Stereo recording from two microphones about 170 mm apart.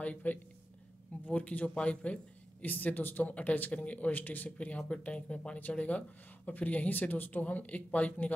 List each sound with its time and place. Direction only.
0.0 s speech: 10° left (ahead or behind)